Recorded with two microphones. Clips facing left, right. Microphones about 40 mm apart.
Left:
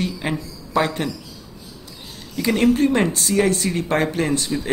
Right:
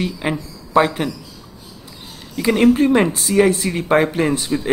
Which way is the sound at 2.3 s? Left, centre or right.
Centre.